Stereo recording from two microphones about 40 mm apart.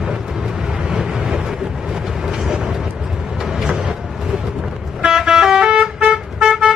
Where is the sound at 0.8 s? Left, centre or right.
Centre.